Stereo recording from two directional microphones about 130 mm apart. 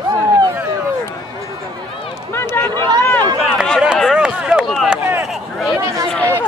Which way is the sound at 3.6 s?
Centre (ahead or behind).